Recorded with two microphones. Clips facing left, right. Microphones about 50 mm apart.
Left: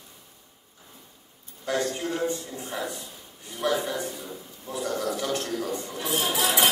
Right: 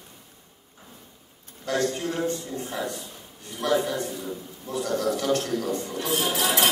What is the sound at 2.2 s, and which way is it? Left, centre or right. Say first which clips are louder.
A man's voice: right 1 dB; centre.